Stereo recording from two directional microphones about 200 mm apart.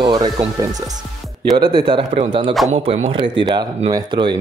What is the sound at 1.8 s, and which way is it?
Speech, 25° right (ahead or behind).